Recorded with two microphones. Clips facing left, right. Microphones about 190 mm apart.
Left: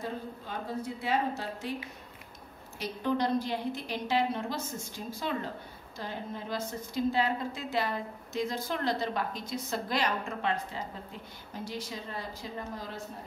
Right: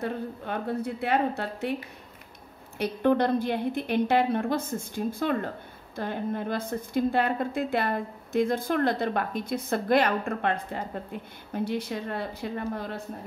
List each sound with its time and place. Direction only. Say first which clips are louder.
0.0 s a woman's voice: right 6 dB; 60° right (ahead or behind)
2.8 s a woman's voice: right 7 dB; 60° right (ahead or behind)